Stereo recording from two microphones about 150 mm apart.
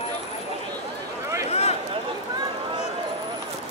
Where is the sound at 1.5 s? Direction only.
45° left (ahead or behind).